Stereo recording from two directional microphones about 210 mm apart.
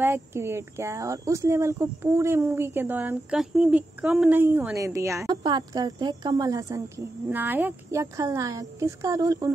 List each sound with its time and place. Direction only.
0.0 s speech: 10° right (ahead or behind)